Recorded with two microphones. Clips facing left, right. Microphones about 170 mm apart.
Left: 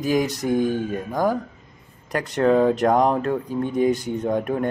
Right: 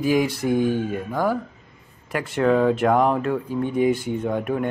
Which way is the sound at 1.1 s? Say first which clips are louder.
Left 1 dB; 15° left (ahead or behind).